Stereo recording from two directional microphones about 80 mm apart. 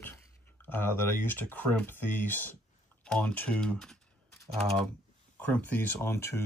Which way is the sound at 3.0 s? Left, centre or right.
Centre.